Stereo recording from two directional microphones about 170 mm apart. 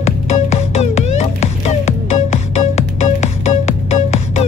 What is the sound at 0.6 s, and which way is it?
Music, 40° left (ahead or behind).